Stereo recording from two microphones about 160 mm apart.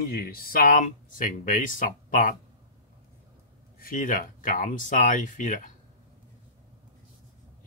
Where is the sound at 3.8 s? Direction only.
60° left (ahead or behind).